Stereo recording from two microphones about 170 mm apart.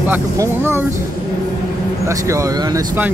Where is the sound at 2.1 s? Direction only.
20° right (ahead or behind).